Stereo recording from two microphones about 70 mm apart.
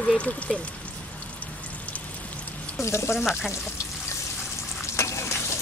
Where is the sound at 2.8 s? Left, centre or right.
Left.